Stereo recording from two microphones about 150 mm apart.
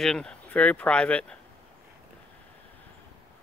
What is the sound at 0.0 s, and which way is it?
Speech, 5° left (ahead or behind).